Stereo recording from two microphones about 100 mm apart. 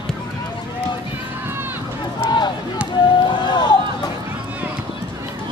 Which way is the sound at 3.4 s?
50° left (ahead or behind).